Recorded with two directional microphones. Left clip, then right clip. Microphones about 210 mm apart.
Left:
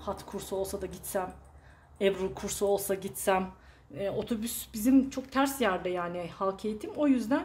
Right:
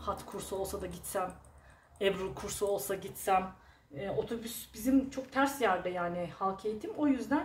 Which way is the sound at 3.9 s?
50° left (ahead or behind).